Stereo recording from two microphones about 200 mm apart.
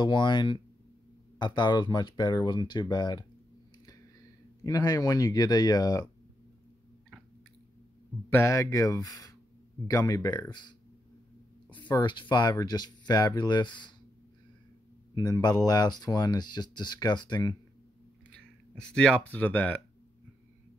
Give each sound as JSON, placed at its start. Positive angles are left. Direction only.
{"t": 0.0, "sound": "speech", "side_deg": 20}
{"t": 4.6, "sound": "speech", "side_deg": 20}
{"t": 8.3, "sound": "speech", "side_deg": 15}
{"t": 11.7, "sound": "speech", "side_deg": 25}
{"t": 15.1, "sound": "speech", "side_deg": 20}
{"t": 18.3, "sound": "speech", "side_deg": 5}